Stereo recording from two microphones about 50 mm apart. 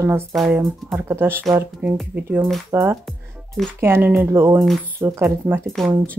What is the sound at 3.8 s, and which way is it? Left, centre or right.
Speech, right.